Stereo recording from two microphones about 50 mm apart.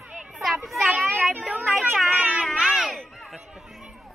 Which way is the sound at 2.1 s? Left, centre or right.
Right.